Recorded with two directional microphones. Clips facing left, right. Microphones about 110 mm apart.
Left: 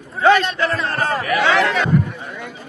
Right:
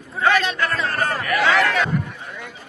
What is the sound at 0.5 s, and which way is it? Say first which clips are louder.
A man's voice: left 2 dB; 30° left (ahead or behind).